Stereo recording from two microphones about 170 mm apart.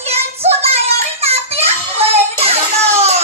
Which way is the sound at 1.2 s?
35° right (ahead or behind).